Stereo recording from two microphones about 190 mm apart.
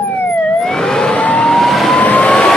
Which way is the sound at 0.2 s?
5° left (ahead or behind).